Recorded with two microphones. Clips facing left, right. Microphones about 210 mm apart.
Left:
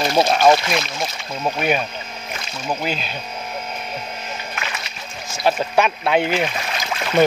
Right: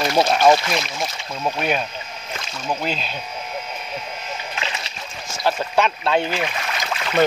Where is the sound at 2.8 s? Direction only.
5° left (ahead or behind).